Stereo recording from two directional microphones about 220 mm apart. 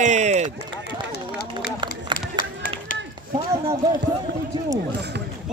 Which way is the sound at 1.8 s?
20° right (ahead or behind).